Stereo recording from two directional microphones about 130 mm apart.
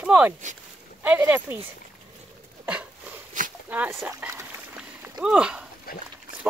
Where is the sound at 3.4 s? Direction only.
90° right.